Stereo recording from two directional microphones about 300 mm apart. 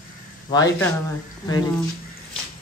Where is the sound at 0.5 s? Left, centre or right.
Centre.